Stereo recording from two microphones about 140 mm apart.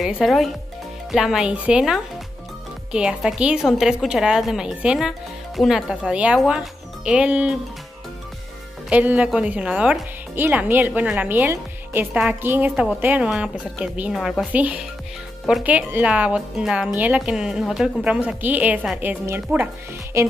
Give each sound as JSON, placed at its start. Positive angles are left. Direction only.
{"t": 0.0, "sound": "a woman's voice", "side_deg": 0}
{"t": 8.8, "sound": "a woman's voice", "side_deg": -10}
{"t": 14.1, "sound": "a woman's voice", "side_deg": 0}
{"t": 14.5, "sound": "a woman's voice", "side_deg": -10}